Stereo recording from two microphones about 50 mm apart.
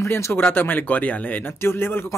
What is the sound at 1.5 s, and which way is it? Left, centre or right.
Speech, left.